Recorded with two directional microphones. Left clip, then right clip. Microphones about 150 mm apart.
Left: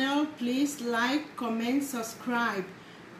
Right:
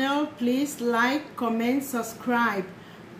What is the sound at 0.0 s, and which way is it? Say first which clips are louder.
Speech: right 3 dB; 5° right (ahead or behind).